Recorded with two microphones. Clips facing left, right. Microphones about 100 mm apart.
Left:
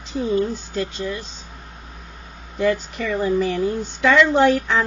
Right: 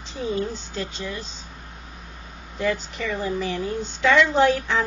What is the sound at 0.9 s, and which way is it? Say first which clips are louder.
Speech: left 5 dB; 45° left (ahead or behind).